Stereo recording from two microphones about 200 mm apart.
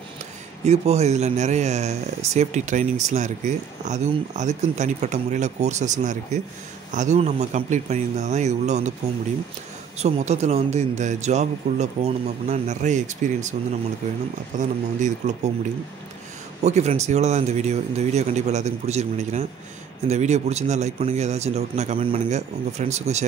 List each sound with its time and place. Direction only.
0.7 s speech: 35° right (ahead or behind)
9.9 s speech: 35° right (ahead or behind)
16.6 s speech: 35° right (ahead or behind)